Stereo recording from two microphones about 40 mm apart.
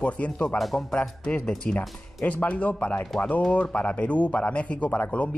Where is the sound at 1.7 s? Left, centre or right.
Left.